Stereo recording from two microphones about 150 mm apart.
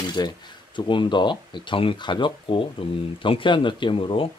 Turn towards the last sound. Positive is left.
turn(degrees=35)  # may be behind; listen again after turning